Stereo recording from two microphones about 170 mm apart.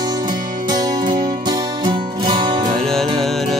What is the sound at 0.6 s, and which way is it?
Music, 25° right (ahead or behind).